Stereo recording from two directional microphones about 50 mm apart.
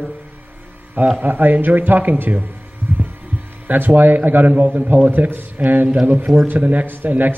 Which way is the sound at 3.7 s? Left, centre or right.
Right.